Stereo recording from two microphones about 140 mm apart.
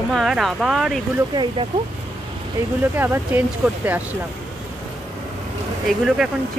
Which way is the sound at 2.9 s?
15° right (ahead or behind).